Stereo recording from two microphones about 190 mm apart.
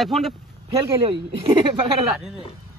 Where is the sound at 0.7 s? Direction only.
20° right (ahead or behind).